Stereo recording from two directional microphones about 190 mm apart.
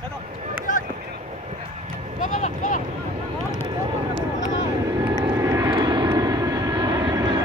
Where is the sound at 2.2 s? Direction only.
45° left (ahead or behind).